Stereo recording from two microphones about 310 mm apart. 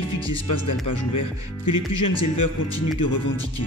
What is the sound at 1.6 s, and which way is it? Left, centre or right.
Speech, left.